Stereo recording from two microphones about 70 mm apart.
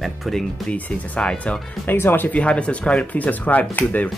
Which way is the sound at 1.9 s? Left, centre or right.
Left.